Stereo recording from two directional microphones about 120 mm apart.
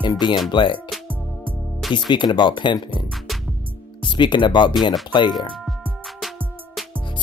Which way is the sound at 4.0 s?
40° left (ahead or behind).